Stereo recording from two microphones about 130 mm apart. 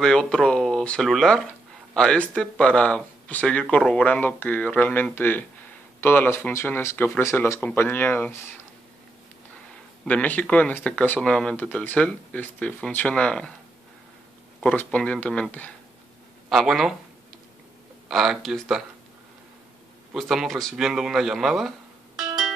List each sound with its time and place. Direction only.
0.0 s speech: 5° left (ahead or behind)
10.0 s speech: 10° left (ahead or behind)
14.8 s speech: 10° left (ahead or behind)
16.4 s speech: centre (ahead or behind)
18.0 s speech: 5° right (ahead or behind)
20.2 s a man's voice: centre (ahead or behind)